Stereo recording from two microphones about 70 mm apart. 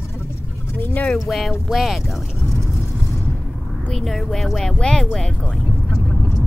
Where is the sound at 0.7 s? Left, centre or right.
Left.